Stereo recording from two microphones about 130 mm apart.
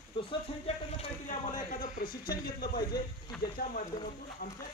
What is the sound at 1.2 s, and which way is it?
Speech, 90° left.